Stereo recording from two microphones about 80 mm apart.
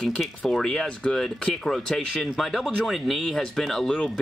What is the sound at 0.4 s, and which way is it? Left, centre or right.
Speech, centre.